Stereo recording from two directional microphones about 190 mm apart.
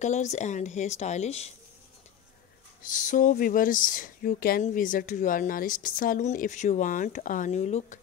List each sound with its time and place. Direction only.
0.0 s speech: 40° left (ahead or behind)
2.8 s speech: 40° left (ahead or behind)